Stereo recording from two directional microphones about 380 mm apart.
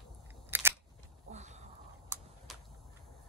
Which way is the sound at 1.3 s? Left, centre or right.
Centre.